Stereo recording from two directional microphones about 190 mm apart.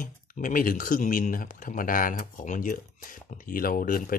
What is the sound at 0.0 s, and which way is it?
Speech, 45° left (ahead or behind).